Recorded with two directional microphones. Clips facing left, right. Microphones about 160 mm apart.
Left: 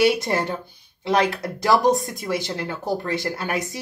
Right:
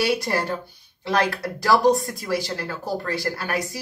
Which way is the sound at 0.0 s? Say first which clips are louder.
Left 3 dB; 20° left (ahead or behind).